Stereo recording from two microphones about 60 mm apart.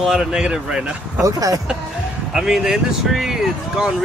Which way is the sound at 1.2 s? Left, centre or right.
Right.